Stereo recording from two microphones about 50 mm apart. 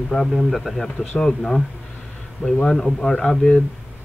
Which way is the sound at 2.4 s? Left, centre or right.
Centre.